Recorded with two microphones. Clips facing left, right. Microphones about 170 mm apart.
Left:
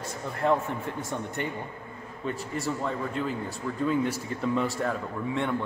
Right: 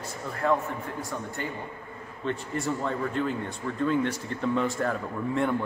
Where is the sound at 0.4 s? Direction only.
25° left (ahead or behind).